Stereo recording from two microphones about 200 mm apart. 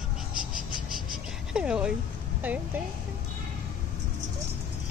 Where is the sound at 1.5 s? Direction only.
5° right (ahead or behind).